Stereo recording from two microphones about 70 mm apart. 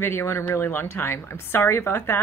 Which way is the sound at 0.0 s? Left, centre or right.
Left.